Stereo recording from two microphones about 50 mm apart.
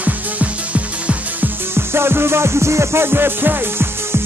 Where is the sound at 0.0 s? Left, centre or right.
Right.